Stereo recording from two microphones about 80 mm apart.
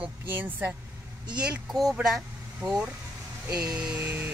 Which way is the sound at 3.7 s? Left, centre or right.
Centre.